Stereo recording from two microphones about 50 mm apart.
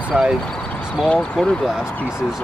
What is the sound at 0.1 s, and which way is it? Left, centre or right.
Speech, right.